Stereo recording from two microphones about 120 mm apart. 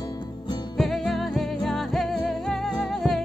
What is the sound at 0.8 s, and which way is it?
Music, centre (ahead or behind).